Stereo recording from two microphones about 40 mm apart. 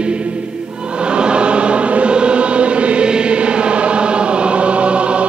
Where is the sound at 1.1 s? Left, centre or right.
Right.